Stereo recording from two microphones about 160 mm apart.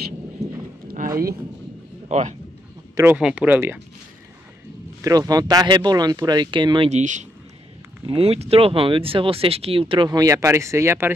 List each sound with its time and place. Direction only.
0.4 s clip-clop: 40° right (ahead or behind)
0.8 s a sound: 60° right (ahead or behind)
2.0 s speech: 50° right (ahead or behind)
3.0 s speech: 10° right (ahead or behind)
5.0 s speech: 20° right (ahead or behind)
6.9 s speech: 50° right (ahead or behind)
8.1 s speech: 40° right (ahead or behind); by 11.1 s 15° right (ahead or behind)